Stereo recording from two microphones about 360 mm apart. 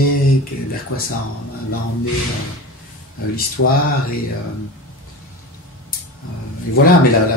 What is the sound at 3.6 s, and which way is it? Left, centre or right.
Speech, left.